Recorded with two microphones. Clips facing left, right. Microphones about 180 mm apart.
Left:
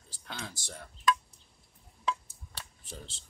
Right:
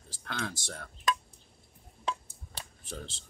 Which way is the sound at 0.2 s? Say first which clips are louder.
Right 6 dB; 65° right (ahead or behind).